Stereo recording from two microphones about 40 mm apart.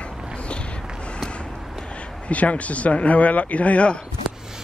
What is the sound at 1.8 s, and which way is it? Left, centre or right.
Speech, left.